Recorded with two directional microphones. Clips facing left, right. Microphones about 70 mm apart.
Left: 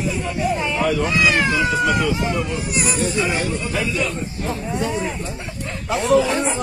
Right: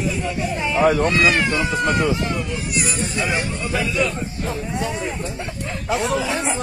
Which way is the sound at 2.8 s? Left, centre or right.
Left.